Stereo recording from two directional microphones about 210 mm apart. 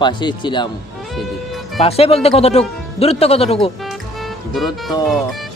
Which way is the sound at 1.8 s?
30° left (ahead or behind).